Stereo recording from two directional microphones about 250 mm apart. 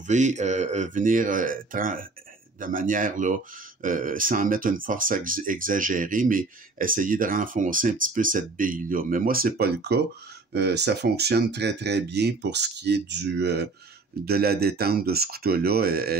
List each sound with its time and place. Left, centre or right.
0.0 s speech: right